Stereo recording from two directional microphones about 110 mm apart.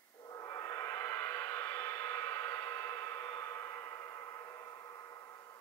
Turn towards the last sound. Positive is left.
turn(degrees=30)  # may be behind; listen again after turning